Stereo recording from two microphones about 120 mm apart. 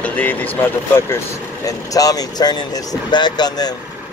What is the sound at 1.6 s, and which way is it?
Speech, 30° left (ahead or behind).